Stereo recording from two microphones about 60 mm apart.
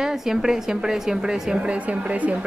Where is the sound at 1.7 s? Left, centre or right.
Right.